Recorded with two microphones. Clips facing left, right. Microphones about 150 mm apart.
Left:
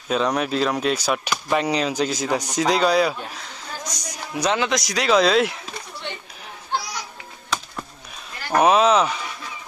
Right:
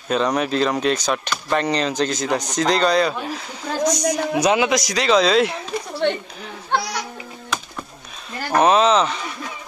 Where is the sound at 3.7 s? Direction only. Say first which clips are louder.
Right 12 dB; 90° right.